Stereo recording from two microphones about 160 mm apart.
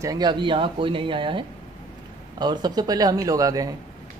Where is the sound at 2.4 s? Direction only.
25° right (ahead or behind).